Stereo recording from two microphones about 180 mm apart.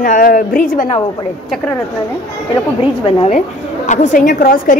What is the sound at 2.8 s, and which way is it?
A woman's voice, 30° left (ahead or behind).